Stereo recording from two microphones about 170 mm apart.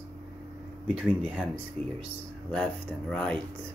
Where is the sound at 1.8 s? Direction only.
35° right (ahead or behind).